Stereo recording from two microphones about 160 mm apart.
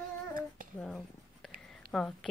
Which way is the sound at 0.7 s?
5° left (ahead or behind).